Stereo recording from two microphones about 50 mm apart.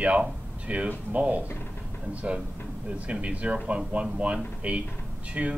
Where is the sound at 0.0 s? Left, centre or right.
Right.